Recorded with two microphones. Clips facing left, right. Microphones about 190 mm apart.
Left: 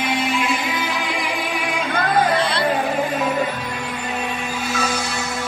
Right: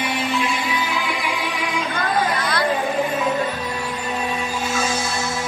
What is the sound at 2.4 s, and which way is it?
Music, 30° left (ahead or behind).